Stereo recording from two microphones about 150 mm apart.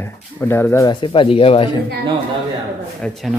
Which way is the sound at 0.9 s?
35° left (ahead or behind).